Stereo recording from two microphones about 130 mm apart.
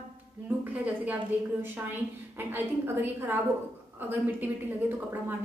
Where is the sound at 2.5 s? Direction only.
15° right (ahead or behind).